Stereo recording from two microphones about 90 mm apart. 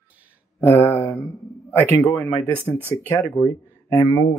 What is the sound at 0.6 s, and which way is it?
Speech, 25° left (ahead or behind).